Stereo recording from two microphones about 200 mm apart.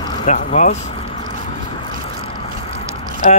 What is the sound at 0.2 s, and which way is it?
Speech, 35° left (ahead or behind).